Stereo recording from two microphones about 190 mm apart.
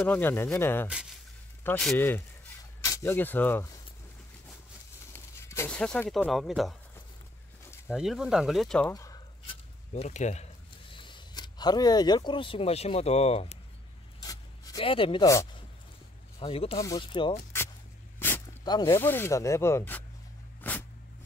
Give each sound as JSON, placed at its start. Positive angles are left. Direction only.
{"t": 0.0, "sound": "speech", "side_deg": 10}
{"t": 5.1, "sound": "speech", "side_deg": 15}
{"t": 7.9, "sound": "speech", "side_deg": -5}
{"t": 8.9, "sound": "a sound", "side_deg": 20}
{"t": 9.9, "sound": "speech", "side_deg": 35}
{"t": 14.2, "sound": "rub", "side_deg": 20}
{"t": 14.8, "sound": "speech", "side_deg": 30}
{"t": 15.2, "sound": "speech", "side_deg": 15}
{"t": 16.3, "sound": "speech", "side_deg": 30}
{"t": 18.6, "sound": "speech", "side_deg": 20}